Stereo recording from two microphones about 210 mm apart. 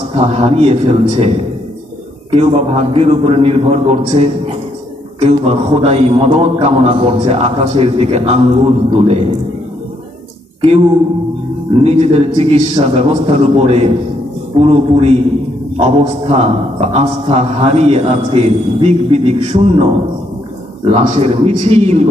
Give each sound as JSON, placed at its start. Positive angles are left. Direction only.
{"t": 0.1, "sound": "a man's voice", "side_deg": -30}
{"t": 2.3, "sound": "a man's voice", "side_deg": -30}
{"t": 10.6, "sound": "a man's voice", "side_deg": -25}